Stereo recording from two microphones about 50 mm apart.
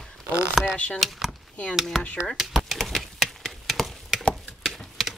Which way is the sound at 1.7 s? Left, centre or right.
Centre.